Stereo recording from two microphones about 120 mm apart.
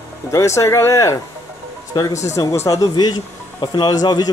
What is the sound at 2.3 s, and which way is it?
Speech, 25° left (ahead or behind).